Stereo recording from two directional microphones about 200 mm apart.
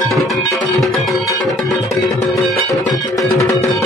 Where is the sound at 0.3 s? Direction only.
Centre (ahead or behind).